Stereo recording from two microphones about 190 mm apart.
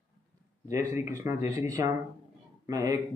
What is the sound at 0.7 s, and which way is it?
Speech, 15° right (ahead or behind).